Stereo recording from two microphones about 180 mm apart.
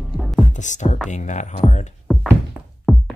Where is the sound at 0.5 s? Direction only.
40° left (ahead or behind).